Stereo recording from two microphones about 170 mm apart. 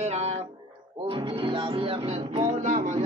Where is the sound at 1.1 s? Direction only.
30° right (ahead or behind); by 3.0 s 50° right (ahead or behind).